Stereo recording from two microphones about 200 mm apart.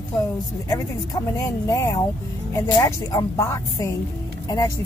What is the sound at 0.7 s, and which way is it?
A woman's voice, 15° left (ahead or behind).